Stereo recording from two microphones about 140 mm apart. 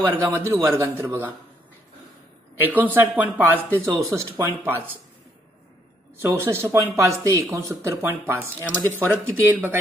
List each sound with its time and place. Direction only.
0.0 s speech: 15° right (ahead or behind)
2.6 s speech: 15° right (ahead or behind)
6.1 s speech: 15° right (ahead or behind)